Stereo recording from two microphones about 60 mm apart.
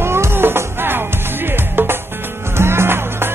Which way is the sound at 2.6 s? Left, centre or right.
Right.